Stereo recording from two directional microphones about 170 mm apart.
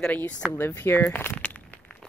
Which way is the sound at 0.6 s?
15° left (ahead or behind).